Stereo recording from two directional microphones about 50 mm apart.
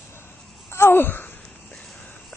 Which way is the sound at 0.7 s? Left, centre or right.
Left.